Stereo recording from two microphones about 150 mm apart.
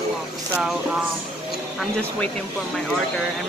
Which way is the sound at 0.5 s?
5° right (ahead or behind).